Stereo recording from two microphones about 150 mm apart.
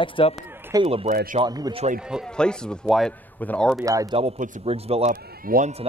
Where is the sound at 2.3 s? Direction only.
5° left (ahead or behind).